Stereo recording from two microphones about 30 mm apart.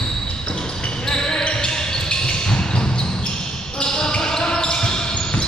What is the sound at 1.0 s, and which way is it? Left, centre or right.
Basketball bounce, left.